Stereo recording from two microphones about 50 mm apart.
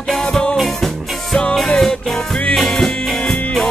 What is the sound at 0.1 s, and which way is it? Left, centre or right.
Music, centre.